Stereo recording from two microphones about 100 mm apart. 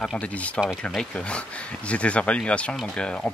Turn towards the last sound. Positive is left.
turn(degrees=10)  # may be behind; listen again after turning